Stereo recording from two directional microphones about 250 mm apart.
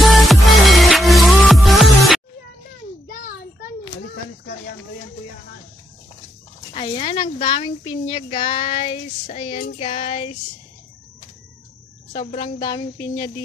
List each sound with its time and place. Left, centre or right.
0.0 s music: centre
6.7 s a woman's voice: left
12.1 s a woman's voice: left